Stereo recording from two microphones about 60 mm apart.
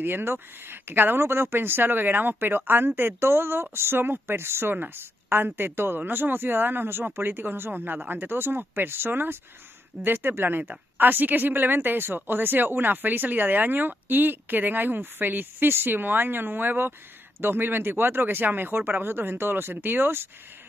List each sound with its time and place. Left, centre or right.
0.0 s speech: right